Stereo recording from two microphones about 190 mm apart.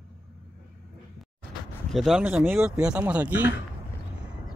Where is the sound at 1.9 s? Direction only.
Centre (ahead or behind).